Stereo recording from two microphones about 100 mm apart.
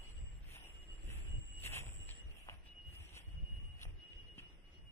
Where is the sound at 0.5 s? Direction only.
25° left (ahead or behind).